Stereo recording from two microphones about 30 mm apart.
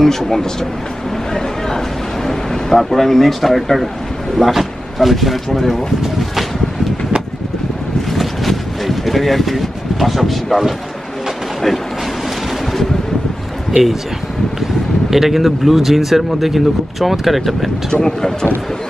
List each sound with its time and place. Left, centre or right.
0.0 s speech: centre
1.1 s a sound: centre
2.2 s vehicle: centre
2.9 s speech: centre
8.1 s a sound: centre
15.0 s speech: centre
18.0 s speech: centre